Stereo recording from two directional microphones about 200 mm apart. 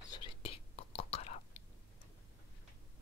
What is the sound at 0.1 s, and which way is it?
Whispering, 25° left (ahead or behind).